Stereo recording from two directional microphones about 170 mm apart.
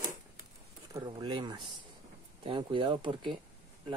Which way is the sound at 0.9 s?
25° right (ahead or behind).